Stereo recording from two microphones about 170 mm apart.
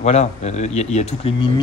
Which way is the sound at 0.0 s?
40° left (ahead or behind).